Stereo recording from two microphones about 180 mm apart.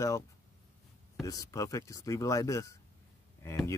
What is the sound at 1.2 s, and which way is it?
Speech, 20° left (ahead or behind).